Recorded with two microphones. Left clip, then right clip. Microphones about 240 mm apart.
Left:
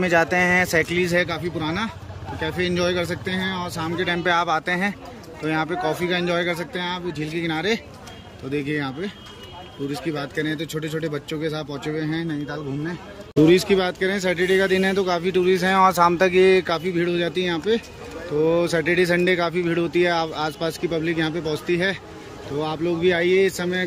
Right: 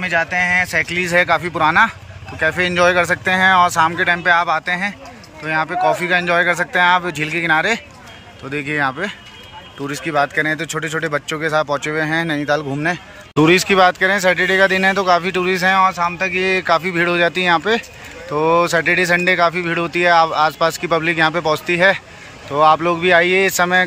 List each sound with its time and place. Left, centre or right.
0.0 s speech: centre
12.3 s speech: right
13.4 s speech: centre